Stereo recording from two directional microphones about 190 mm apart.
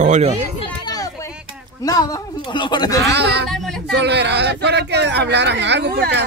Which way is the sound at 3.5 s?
Centre (ahead or behind).